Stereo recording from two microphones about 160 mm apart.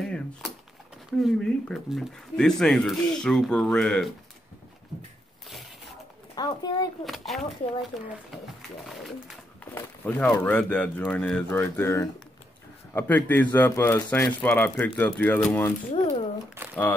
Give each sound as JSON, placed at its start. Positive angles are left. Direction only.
{"t": 0.0, "sound": "a sound", "side_deg": 0}
{"t": 1.2, "sound": "speech", "side_deg": 0}
{"t": 6.3, "sound": "speech", "side_deg": 25}
{"t": 7.1, "sound": "speech", "side_deg": 0}
{"t": 15.9, "sound": "speech", "side_deg": 40}